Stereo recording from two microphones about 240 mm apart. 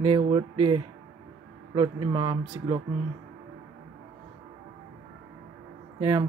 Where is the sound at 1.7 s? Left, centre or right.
Centre.